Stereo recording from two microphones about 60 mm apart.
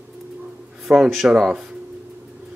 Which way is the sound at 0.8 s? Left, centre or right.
Centre.